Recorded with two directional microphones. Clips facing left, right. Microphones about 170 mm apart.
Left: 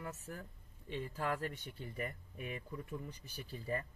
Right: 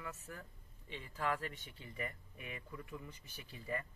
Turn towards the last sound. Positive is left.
turn(degrees=40)  # may be behind; listen again after turning